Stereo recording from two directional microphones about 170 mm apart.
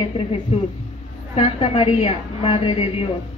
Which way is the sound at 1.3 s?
35° left (ahead or behind).